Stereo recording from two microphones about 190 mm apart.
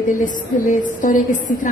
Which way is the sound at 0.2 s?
45° left (ahead or behind).